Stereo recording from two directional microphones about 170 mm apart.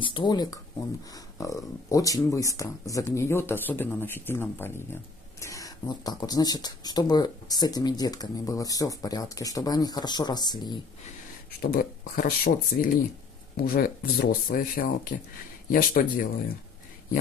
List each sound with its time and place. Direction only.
0.0 s speech: 25° left (ahead or behind)
11.6 s speech: 55° left (ahead or behind)